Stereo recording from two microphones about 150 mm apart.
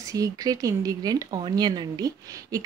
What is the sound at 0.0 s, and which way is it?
Speech, 25° right (ahead or behind).